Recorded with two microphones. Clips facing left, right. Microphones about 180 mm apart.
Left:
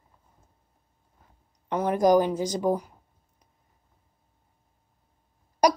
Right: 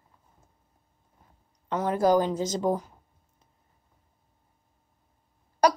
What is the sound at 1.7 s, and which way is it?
A woman's voice, 15° left (ahead or behind).